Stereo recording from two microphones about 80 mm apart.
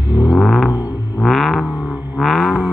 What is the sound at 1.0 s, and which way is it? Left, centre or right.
Vehicle, left.